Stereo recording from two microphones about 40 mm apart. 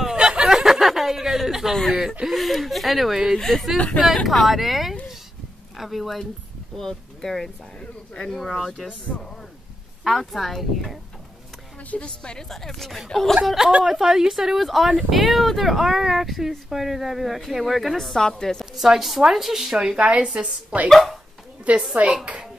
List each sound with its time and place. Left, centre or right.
0.0 s a sound: right
0.6 s a sound: centre
1.9 s chuckle: centre
2.2 s speech: centre
10.0 s speech: centre
11.9 s a woman's voice: left
12.4 s speech: centre
13.8 s a woman's voice: centre
17.9 s a woman's voice: centre
18.8 s a woman's voice: centre
20.0 s a woman's voice: right
20.9 s speech: centre
21.7 s a woman's voice: right